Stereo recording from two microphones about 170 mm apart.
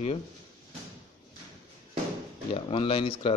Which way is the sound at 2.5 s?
35° left (ahead or behind).